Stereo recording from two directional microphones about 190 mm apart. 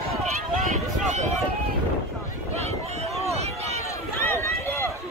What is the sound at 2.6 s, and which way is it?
Run, 35° right (ahead or behind).